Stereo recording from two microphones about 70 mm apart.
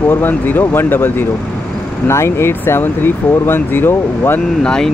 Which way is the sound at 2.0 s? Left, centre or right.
Left.